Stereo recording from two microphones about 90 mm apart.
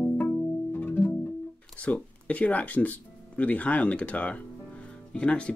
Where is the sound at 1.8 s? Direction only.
15° left (ahead or behind).